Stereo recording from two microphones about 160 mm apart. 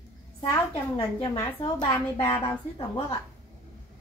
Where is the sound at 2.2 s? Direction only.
35° left (ahead or behind).